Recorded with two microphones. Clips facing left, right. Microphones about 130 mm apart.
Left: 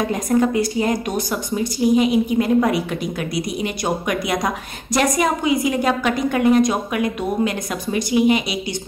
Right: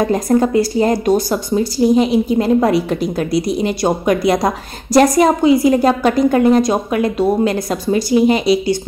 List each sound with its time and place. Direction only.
0.1 s speech: 35° right (ahead or behind)